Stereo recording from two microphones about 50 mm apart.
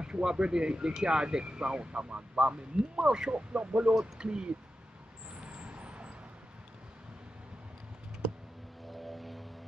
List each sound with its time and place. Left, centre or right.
0.0 s speech: centre
5.3 s vehicle: right
8.9 s vehicle: centre